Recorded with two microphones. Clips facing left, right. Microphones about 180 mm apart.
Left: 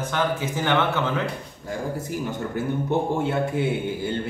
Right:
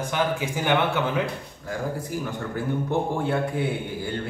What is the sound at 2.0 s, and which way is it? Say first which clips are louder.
A man's voice: left 2 dB; 20° left (ahead or behind).